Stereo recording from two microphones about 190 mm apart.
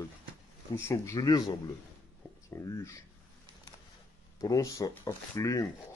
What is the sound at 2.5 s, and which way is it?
Speech, 15° left (ahead or behind).